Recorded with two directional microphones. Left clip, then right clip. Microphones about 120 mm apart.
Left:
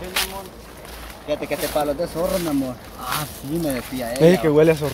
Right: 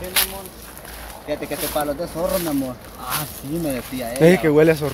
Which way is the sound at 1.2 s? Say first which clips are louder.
Left 2 dB; 20° left (ahead or behind).